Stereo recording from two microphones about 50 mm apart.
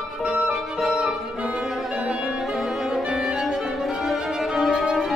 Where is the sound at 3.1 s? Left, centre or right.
Centre.